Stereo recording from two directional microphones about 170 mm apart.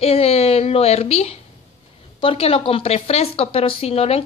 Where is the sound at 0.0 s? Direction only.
35° left (ahead or behind).